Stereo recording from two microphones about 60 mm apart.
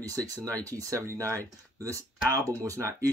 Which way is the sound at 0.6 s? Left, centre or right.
Right.